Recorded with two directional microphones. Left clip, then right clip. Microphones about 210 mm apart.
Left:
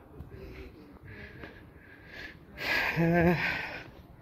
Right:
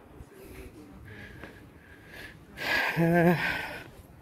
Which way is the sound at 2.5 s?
20° right (ahead or behind).